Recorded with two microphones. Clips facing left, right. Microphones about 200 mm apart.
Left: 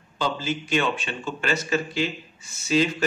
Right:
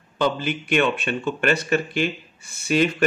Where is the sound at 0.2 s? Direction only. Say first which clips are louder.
Right 4 dB; 60° right (ahead or behind).